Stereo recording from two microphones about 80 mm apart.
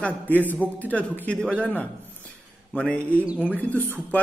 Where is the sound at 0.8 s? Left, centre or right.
Centre.